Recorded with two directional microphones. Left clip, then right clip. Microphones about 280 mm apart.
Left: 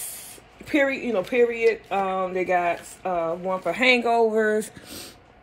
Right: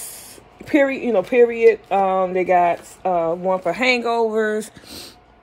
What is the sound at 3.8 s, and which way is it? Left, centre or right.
Speech, centre.